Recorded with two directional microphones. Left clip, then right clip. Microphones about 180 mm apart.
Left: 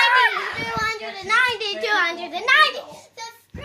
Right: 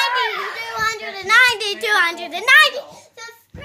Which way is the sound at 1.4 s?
65° right (ahead or behind).